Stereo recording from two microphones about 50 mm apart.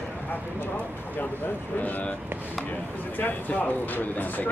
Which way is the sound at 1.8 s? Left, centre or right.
Left.